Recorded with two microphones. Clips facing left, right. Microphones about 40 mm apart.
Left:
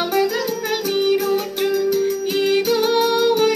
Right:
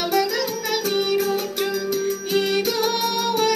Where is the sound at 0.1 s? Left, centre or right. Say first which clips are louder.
Left 2 dB; left.